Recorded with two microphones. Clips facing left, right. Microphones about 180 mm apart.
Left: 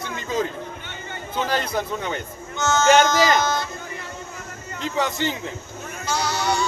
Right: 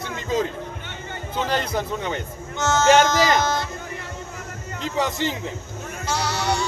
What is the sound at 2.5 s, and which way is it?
Speech, 30° right (ahead or behind).